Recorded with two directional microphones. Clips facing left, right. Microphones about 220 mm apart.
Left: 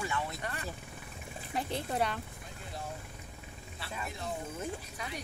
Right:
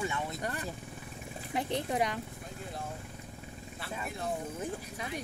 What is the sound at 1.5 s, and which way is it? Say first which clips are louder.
Speech: right 3 dB; 20° right (ahead or behind).